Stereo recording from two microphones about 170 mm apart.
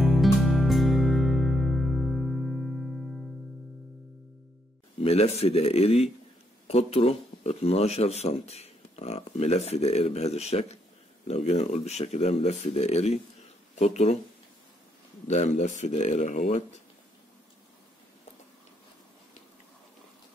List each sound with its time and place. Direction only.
0.0 s music: centre (ahead or behind)
5.0 s speech: 35° left (ahead or behind)
15.2 s speech: 40° left (ahead or behind)